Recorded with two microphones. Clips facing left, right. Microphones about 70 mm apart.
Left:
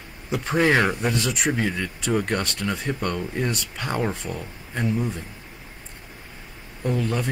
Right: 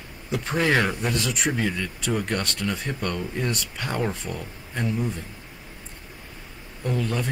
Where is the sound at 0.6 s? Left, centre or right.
Centre.